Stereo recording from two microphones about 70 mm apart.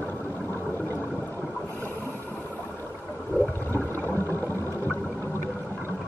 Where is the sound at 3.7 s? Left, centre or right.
Left.